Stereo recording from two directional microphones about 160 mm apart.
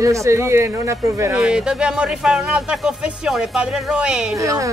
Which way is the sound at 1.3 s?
5° right (ahead or behind).